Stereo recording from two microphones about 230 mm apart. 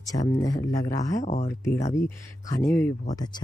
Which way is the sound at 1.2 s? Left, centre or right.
Left.